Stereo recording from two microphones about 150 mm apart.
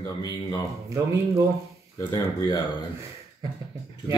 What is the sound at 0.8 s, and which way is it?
Speech, 20° right (ahead or behind).